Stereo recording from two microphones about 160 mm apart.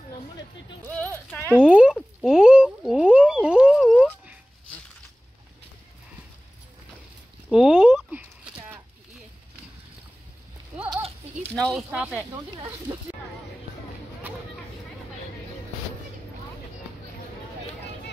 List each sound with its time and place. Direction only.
0.9 s speech: 10° left (ahead or behind)
1.6 s speech: 5° right (ahead or behind)
2.0 s a sound: 5° right (ahead or behind)
7.5 s a sound: 5° right (ahead or behind)
11.6 s speech: 5° right (ahead or behind)
12.3 s speech: 20° right (ahead or behind)